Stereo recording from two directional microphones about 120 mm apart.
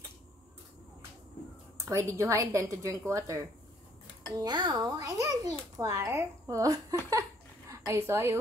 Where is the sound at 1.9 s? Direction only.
25° right (ahead or behind).